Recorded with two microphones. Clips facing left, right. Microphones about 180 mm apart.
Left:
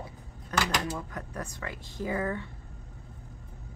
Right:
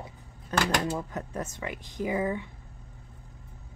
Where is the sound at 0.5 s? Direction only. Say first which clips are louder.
Right 2 dB; 25° right (ahead or behind).